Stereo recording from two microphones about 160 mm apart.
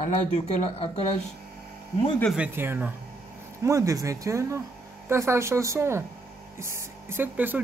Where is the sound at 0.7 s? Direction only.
40° left (ahead or behind).